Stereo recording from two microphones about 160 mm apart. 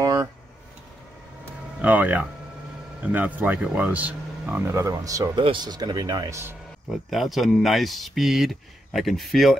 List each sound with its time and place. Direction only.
0.0 s a sound: 20° right (ahead or behind)
1.8 s speech: 10° right (ahead or behind)
7.1 s speech: centre (ahead or behind)